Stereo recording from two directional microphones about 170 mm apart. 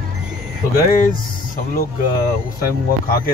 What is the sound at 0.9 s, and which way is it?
Speech, 50° left (ahead or behind).